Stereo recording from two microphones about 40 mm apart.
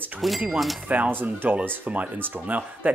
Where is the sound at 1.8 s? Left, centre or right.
Right.